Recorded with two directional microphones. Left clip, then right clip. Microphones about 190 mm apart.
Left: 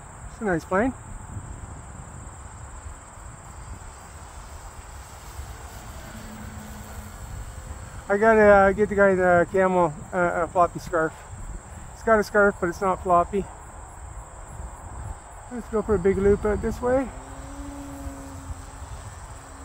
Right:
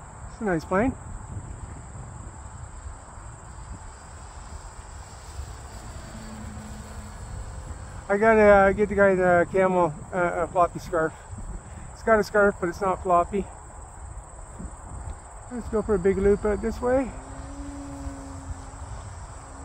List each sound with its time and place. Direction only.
0.4 s speech: 5° right (ahead or behind)
6.1 s vehicle: 15° right (ahead or behind)
8.1 s speech: 5° right (ahead or behind)
15.5 s a sound: 5° right (ahead or behind)